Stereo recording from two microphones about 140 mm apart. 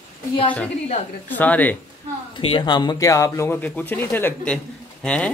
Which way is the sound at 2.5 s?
30° left (ahead or behind).